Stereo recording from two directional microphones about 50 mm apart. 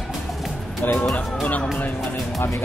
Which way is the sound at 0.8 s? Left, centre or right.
Left.